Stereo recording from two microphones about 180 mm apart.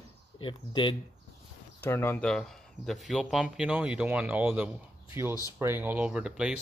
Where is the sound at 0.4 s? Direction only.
25° left (ahead or behind).